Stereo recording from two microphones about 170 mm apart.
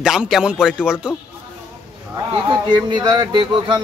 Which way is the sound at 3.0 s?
25° right (ahead or behind).